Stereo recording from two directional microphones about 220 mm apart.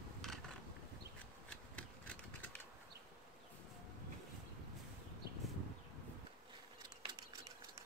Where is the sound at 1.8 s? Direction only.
5° left (ahead or behind).